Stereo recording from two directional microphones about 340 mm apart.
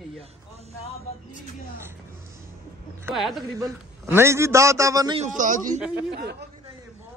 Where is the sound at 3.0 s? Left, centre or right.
Centre; by 6.5 s right.